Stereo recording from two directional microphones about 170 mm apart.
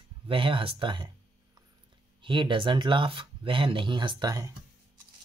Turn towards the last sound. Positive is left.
turn(degrees=-25)  # may be behind; listen again after turning